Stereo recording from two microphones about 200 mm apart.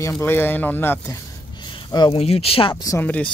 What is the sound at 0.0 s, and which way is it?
Speech, 15° left (ahead or behind).